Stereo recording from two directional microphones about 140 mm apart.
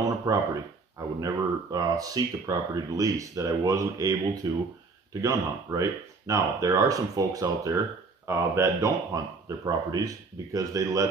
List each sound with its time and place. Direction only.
0.3 s speech: 25° right (ahead or behind)